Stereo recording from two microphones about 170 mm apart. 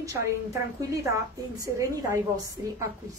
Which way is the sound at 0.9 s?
20° right (ahead or behind).